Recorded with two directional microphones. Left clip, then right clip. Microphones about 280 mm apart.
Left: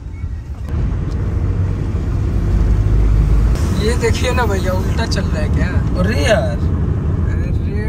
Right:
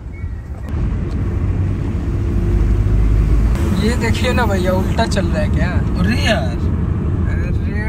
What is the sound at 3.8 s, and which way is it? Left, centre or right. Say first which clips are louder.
Speech: left 2 dB; centre.